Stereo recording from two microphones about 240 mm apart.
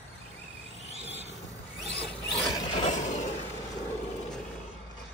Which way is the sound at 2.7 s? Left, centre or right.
Left.